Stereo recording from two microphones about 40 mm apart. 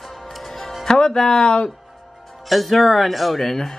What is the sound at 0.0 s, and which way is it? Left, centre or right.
Music, centre.